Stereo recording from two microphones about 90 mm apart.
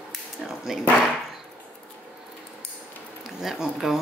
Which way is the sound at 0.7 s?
5° right (ahead or behind).